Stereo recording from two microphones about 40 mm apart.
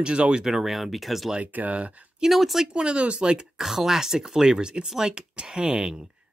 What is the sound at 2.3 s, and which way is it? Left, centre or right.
Speech, centre.